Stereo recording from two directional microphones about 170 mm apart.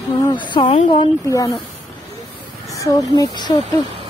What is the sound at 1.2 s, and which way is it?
Speech, 20° left (ahead or behind).